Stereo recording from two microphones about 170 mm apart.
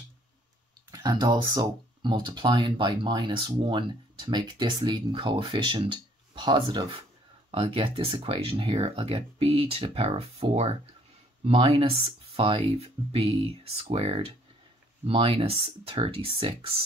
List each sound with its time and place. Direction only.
0.9 s speech: 25° right (ahead or behind)